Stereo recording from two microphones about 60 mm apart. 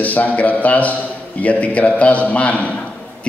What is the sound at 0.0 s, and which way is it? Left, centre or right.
A man's voice, left.